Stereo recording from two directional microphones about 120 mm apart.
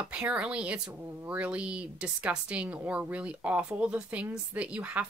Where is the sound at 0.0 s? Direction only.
10° right (ahead or behind).